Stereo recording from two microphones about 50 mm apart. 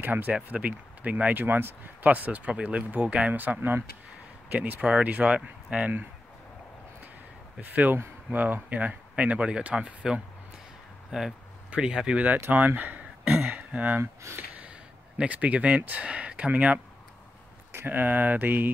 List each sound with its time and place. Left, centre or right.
0.0 s speech: right
2.0 s speech: right
4.6 s speech: right
4.8 s speech: centre
7.9 s speech: right
11.1 s speech: centre
12.4 s speech: right
13.3 s a sound: centre
13.6 s a sound: right
14.6 s speech: right
17.8 s speech: right